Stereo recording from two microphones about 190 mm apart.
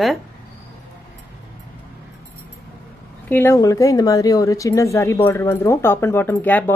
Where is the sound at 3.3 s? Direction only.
15° left (ahead or behind).